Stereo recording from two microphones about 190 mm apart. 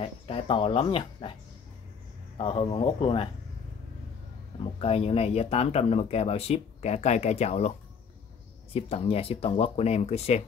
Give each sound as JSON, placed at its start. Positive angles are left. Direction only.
{"t": 0.0, "sound": "speech", "side_deg": 30}
{"t": 2.3, "sound": "speech", "side_deg": 25}
{"t": 4.7, "sound": "speech", "side_deg": 30}
{"t": 8.7, "sound": "speech", "side_deg": 30}